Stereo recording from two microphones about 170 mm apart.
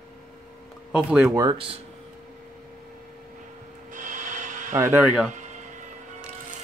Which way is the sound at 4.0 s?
50° right (ahead or behind).